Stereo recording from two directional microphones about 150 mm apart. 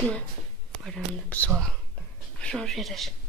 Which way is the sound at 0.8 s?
5° left (ahead or behind).